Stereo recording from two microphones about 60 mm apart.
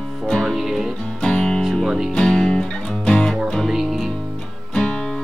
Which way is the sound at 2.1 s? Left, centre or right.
Centre.